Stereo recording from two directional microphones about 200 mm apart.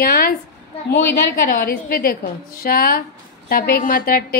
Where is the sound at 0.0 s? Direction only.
50° left (ahead or behind).